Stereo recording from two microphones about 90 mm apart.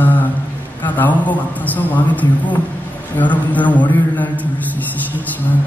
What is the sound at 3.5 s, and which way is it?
A man's voice, 15° left (ahead or behind).